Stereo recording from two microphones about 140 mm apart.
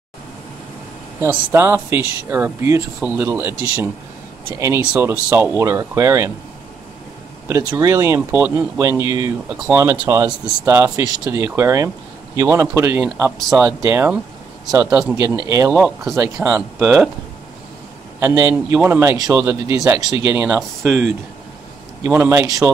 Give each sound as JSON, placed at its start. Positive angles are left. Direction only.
{"t": 1.2, "sound": "a man's voice", "side_deg": -20}
{"t": 4.6, "sound": "speech", "side_deg": -20}
{"t": 7.4, "sound": "speech", "side_deg": -15}
{"t": 10.2, "sound": "a man's voice", "side_deg": -10}
{"t": 10.7, "sound": "a man's voice", "side_deg": -20}
{"t": 15.7, "sound": "a man's voice", "side_deg": 0}
{"t": 18.2, "sound": "a man's voice", "side_deg": -20}
{"t": 20.3, "sound": "speech", "side_deg": -5}
{"t": 22.0, "sound": "a man's voice", "side_deg": -15}